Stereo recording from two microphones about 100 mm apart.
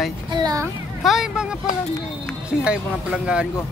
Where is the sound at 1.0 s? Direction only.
5° right (ahead or behind).